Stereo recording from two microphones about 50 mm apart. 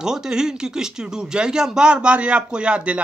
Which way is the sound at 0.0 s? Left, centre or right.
Centre.